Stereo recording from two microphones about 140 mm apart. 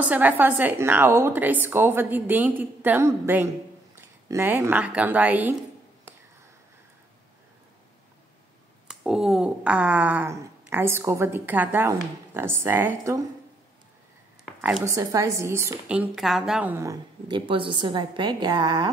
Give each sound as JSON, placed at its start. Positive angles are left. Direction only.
{"t": 0.0, "sound": "a woman's voice", "side_deg": -10}
{"t": 8.8, "sound": "a woman's voice", "side_deg": -5}
{"t": 14.9, "sound": "a woman's voice", "side_deg": -25}
{"t": 15.9, "sound": "a woman's voice", "side_deg": -5}
{"t": 17.3, "sound": "a woman's voice", "side_deg": -35}